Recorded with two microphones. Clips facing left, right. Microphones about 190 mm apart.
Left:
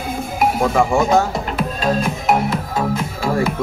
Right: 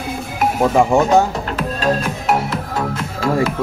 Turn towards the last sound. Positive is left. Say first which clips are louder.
# left 1 dB
turn(degrees=10)  # may be behind; listen again after turning